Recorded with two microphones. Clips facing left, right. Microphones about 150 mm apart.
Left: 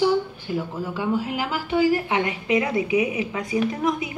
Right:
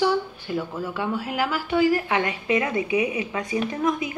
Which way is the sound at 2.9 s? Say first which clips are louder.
Left 1 dB; 15° left (ahead or behind).